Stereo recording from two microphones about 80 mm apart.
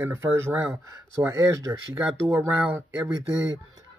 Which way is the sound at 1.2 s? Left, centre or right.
Right.